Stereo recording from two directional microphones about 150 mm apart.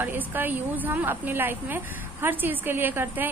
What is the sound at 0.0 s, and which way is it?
A woman's voice, 15° right (ahead or behind).